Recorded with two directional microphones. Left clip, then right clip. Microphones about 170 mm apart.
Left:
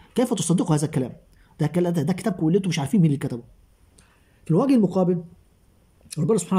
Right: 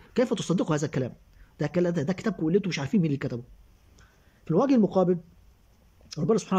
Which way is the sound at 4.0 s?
15° left (ahead or behind).